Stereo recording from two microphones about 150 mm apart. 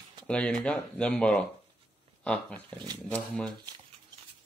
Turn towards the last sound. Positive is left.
turn(degrees=-30)  # may be behind; listen again after turning